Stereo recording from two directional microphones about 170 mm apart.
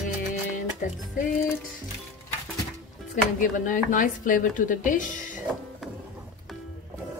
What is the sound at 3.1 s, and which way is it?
A woman's voice, 50° left (ahead or behind).